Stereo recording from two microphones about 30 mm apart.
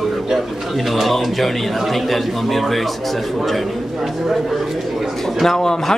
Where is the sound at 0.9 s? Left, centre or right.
Centre.